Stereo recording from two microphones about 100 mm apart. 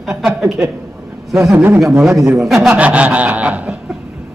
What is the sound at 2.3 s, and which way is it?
Speech, centre (ahead or behind).